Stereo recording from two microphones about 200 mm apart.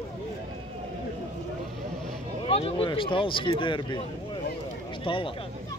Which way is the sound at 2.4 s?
30° left (ahead or behind).